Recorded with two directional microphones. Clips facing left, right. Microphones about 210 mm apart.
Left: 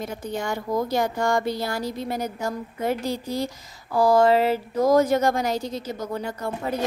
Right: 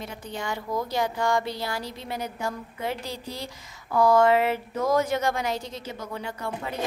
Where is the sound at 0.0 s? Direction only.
45° left (ahead or behind).